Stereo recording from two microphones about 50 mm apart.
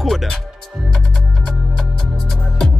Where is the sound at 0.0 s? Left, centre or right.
Centre.